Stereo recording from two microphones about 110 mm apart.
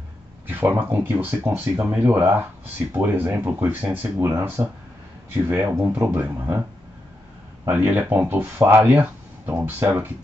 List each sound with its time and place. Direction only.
0.5 s speech: 20° right (ahead or behind)
7.6 s speech: 20° right (ahead or behind)